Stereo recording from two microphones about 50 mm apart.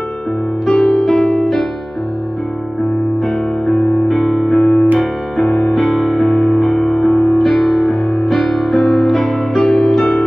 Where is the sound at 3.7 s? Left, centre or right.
Left.